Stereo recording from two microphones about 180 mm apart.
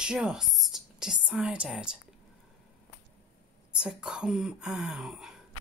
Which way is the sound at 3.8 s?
5° right (ahead or behind).